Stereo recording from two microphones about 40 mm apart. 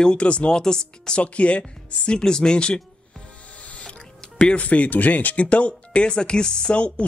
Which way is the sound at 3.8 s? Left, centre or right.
Left.